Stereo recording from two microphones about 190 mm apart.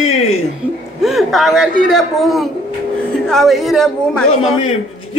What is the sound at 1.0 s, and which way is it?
Speech, centre (ahead or behind).